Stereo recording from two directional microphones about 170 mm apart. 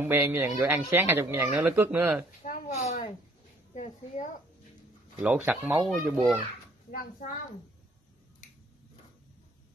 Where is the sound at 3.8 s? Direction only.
45° left (ahead or behind).